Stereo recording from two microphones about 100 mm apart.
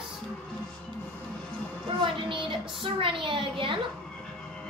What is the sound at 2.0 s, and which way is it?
Speech, 60° right (ahead or behind).